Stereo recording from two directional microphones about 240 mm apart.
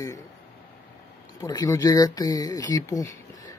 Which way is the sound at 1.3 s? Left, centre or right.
Centre.